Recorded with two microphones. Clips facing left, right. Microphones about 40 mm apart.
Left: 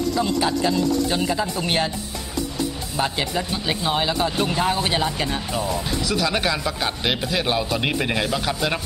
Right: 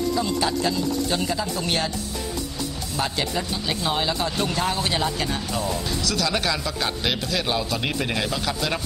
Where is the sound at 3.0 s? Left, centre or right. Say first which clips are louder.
Left 2 dB; centre.